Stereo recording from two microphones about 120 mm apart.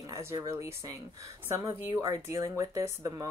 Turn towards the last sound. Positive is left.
turn(degrees=-25)  # may be behind; listen again after turning